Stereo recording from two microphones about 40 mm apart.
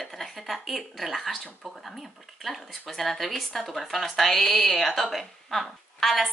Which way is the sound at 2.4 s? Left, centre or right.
Centre.